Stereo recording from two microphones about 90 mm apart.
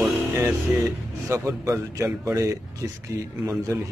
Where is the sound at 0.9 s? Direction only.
35° right (ahead or behind).